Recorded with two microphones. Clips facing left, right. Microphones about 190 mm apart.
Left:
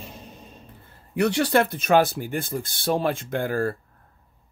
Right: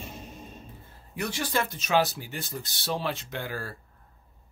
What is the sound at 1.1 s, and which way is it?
Speech, 70° left (ahead or behind).